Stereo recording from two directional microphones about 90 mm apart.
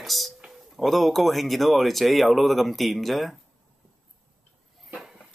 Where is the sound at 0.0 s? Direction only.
Centre (ahead or behind).